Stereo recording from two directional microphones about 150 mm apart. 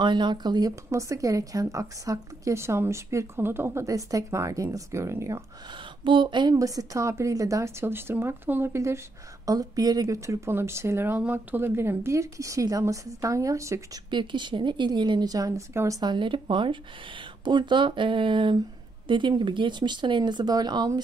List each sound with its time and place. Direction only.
0.0 s speech: 30° right (ahead or behind)
5.7 s speech: 35° right (ahead or behind)